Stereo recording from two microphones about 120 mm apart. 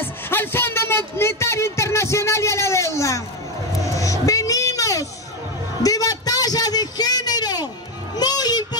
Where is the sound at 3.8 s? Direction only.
25° left (ahead or behind).